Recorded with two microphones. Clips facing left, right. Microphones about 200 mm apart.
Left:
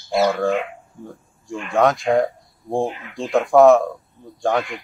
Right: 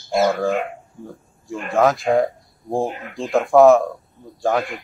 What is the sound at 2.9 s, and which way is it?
Speech, 45° right (ahead or behind).